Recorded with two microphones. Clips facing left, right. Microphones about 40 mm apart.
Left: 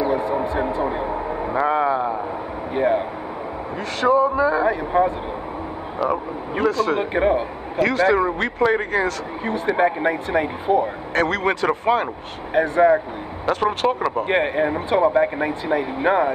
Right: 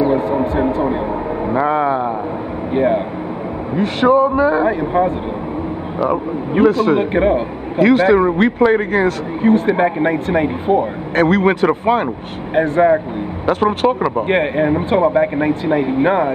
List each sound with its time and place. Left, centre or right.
0.0 s a sound: centre
0.7 s vehicle: centre
1.9 s a sound: right
2.7 s a sound: centre
3.7 s a man's voice: right
4.6 s speech: centre
6.7 s a man's voice: right
8.3 s speech: centre
12.5 s speech: centre